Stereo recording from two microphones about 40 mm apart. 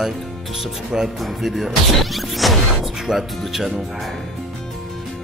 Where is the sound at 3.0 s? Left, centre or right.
Centre.